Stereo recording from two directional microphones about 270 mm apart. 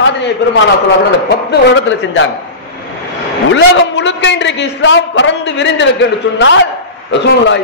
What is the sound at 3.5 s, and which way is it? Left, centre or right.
A man's voice, left.